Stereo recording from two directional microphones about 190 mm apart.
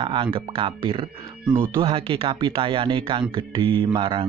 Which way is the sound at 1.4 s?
15° right (ahead or behind).